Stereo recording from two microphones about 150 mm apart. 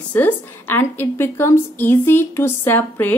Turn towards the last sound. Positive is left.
turn(degrees=10)  # may be behind; listen again after turning